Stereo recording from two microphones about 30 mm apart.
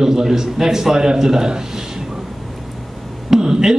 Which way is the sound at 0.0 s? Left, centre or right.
Centre.